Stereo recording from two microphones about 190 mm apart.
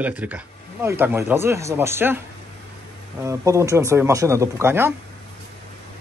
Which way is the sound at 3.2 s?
15° right (ahead or behind).